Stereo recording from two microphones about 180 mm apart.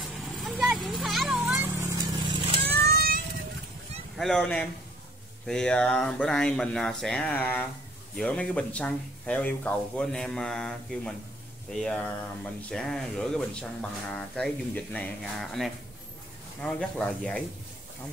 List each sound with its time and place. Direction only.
0.0 s a sound: centre (ahead or behind)
1.4 s vehicle: 15° right (ahead or behind)
2.6 s vehicle: 60° right (ahead or behind)
4.2 s speech: 5° left (ahead or behind)